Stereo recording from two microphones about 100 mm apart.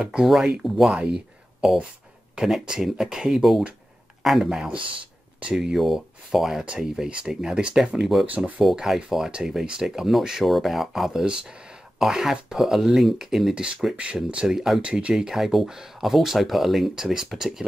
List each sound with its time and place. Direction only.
0.0 s speech: 10° right (ahead or behind)
4.7 s speech: 60° right (ahead or behind)
5.4 s speech: 5° right (ahead or behind)